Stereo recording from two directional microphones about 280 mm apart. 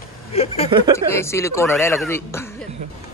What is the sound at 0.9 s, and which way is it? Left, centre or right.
A man's voice, centre.